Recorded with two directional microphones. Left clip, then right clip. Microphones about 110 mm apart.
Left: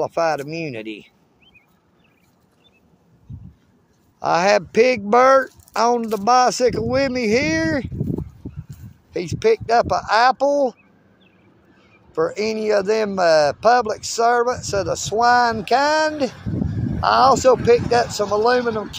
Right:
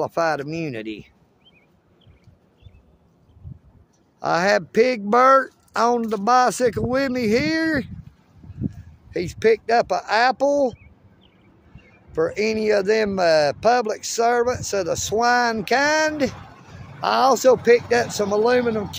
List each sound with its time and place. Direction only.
0.0 s speech: 35° right (ahead or behind)
4.2 s a man's voice: 20° right (ahead or behind)
9.1 s speech: 25° right (ahead or behind)
12.1 s speech: 30° right (ahead or behind)
16.3 s a sound: centre (ahead or behind)
17.0 s speech: 35° right (ahead or behind)